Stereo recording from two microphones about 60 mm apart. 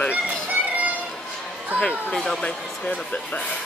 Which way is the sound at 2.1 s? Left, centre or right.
Centre.